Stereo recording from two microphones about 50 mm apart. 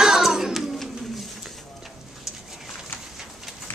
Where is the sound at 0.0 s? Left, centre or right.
Centre.